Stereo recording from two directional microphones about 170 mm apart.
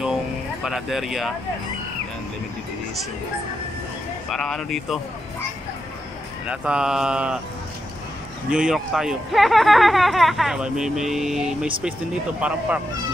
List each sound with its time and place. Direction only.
0.0 s a sound: 5° right (ahead or behind)
4.3 s speech: centre (ahead or behind)
6.4 s speech: 5° right (ahead or behind)
8.5 s speech: 5° right (ahead or behind)